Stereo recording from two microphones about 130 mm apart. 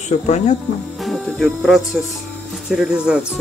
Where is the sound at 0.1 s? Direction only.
65° left (ahead or behind).